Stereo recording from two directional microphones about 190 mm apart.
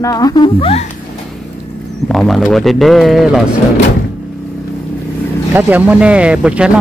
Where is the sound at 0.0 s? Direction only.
20° left (ahead or behind).